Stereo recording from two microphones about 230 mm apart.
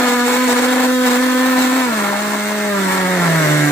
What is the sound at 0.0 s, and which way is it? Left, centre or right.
Blender, centre.